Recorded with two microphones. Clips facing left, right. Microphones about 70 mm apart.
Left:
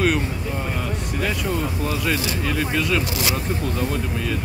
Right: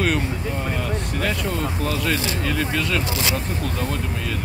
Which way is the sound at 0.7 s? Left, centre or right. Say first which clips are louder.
Right 1 dB; centre.